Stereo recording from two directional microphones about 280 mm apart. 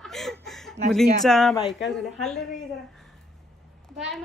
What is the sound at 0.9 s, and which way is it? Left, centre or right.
Speech, centre.